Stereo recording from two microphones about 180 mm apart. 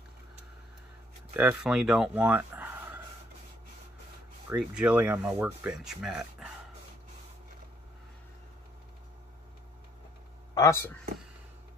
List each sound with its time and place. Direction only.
1.3 s speech: 5° right (ahead or behind)
4.5 s speech: 5° right (ahead or behind)
10.5 s speech: 15° left (ahead or behind)